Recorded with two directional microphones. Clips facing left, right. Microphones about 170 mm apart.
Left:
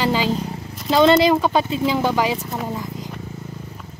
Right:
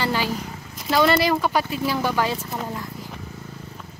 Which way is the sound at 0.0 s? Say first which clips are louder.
Left 4 dB; 15° left (ahead or behind).